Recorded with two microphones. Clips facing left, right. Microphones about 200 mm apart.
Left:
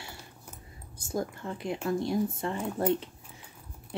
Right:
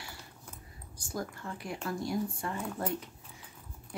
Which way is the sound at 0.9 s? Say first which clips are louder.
Left 5 dB; 25° left (ahead or behind).